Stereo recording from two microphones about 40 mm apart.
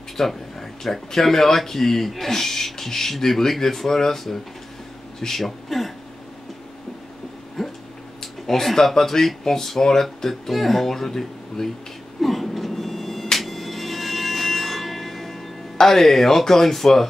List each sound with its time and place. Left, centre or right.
0.2 s speech: centre
7.6 s a sound: centre
8.2 s speech: centre
12.2 s music: centre